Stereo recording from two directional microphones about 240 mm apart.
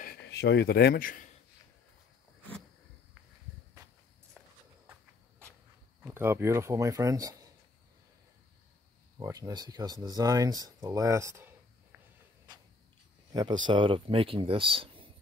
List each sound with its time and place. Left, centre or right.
0.0 s speech: left
4.4 s walk: centre
6.0 s speech: centre
9.2 s speech: centre
13.3 s speech: centre